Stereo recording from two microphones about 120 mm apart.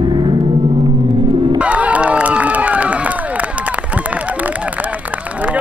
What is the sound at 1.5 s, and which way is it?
Crowd, 10° right (ahead or behind).